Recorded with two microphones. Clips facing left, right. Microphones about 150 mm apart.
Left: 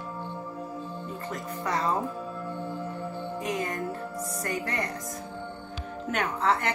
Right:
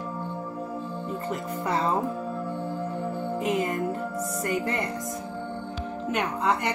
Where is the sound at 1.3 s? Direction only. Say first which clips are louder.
Right 2 dB; 25° right (ahead or behind).